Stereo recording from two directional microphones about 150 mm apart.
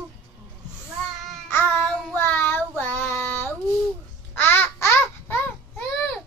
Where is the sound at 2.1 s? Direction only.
10° left (ahead or behind).